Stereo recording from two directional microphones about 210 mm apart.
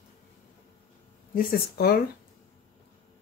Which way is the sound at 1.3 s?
45° left (ahead or behind).